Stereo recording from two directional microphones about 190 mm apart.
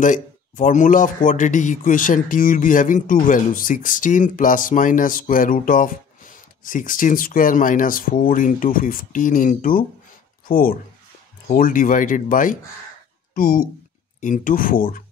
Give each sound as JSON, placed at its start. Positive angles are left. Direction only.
{"t": 0.0, "sound": "a man's voice", "side_deg": 40}